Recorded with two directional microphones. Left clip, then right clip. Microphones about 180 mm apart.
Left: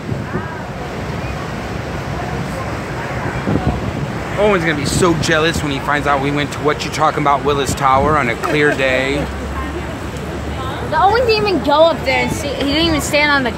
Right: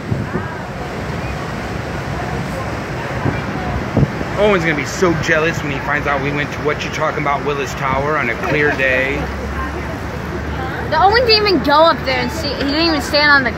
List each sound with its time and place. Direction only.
4.4 s speech: centre (ahead or behind)
5.0 s speech: 20° left (ahead or behind)
11.0 s speech: 15° right (ahead or behind)
11.9 s speech: 10° left (ahead or behind)